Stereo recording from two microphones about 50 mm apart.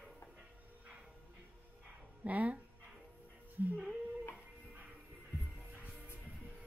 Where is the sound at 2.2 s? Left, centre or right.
Right.